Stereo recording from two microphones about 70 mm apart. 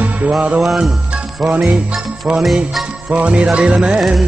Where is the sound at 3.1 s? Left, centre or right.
Centre.